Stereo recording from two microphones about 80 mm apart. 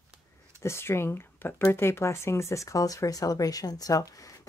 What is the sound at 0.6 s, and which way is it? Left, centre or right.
Speech, left.